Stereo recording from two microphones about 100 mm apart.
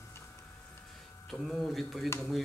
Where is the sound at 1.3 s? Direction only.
Centre (ahead or behind).